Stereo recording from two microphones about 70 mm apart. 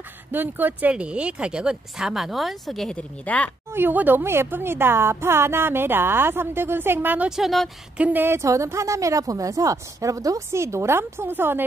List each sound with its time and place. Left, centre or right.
0.3 s speech: right; by 3.0 s centre
3.0 s speech: centre
3.7 s speech: right
7.2 s a woman's voice: centre
8.0 s speech: right
8.6 s speech: right
10.5 s speech: right